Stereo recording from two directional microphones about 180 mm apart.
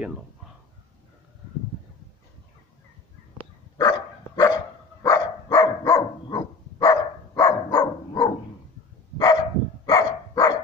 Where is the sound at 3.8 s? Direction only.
20° left (ahead or behind).